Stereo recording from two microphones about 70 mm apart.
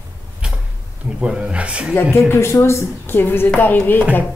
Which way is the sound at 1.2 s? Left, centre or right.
Centre.